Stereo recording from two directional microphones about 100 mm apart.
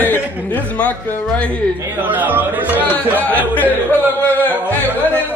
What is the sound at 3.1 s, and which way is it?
Speech, 15° left (ahead or behind).